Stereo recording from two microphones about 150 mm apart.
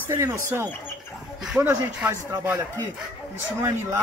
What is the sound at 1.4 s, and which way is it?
Speech, 10° right (ahead or behind).